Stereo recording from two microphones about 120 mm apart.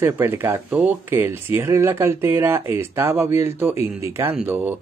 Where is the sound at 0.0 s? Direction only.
20° right (ahead or behind).